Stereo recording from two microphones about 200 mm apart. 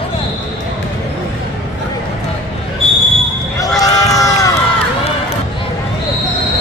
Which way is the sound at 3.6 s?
15° left (ahead or behind).